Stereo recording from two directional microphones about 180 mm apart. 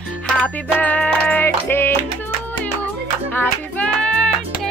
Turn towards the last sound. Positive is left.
turn(degrees=5)  # may be behind; listen again after turning